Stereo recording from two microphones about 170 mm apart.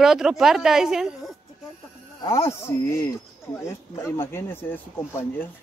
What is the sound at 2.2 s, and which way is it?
Speech, 15° left (ahead or behind).